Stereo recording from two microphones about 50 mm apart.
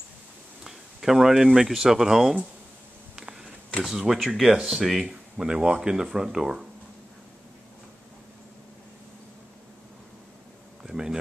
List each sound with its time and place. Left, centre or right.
0.7 s speech: centre
3.8 s speech: centre
10.8 s a sound: centre